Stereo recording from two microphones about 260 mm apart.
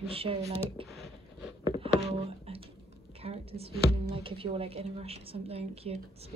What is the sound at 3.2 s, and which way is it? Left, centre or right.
A woman's voice, right.